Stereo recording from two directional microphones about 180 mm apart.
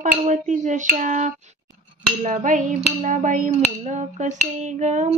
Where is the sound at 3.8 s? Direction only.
40° right (ahead or behind).